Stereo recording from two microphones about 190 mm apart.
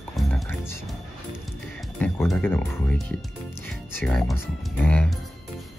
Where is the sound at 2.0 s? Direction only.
10° left (ahead or behind).